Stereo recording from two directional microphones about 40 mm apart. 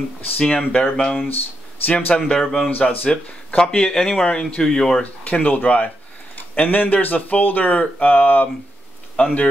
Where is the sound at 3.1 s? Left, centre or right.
Left.